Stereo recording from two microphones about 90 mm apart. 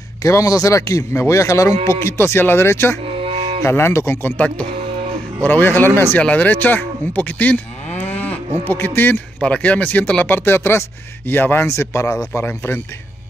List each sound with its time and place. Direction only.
0.2 s speech: 35° left (ahead or behind)
3.2 s music: 90° right
3.6 s speech: 30° left (ahead or behind)
8.0 s cattle: 15° left (ahead or behind)
9.4 s speech: 15° left (ahead or behind)